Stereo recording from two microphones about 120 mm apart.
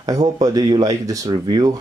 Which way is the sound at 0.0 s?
30° right (ahead or behind).